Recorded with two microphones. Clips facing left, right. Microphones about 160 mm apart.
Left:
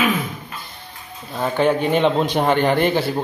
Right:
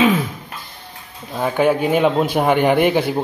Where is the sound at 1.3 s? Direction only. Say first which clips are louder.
Right 2 dB; 10° right (ahead or behind).